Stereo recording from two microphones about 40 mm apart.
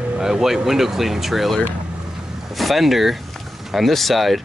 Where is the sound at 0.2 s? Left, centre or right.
Centre.